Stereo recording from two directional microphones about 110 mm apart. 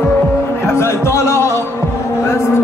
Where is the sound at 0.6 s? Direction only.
25° left (ahead or behind).